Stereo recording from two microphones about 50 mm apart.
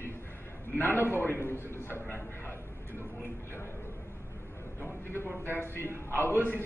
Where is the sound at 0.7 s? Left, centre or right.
Left.